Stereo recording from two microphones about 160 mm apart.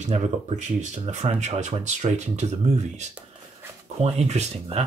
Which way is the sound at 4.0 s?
45° right (ahead or behind).